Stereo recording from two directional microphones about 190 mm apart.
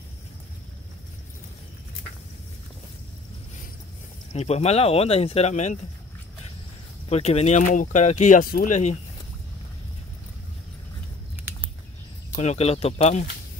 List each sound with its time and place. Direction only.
4.3 s speech: 35° left (ahead or behind)
7.1 s speech: 35° left (ahead or behind)
12.4 s speech: 35° left (ahead or behind)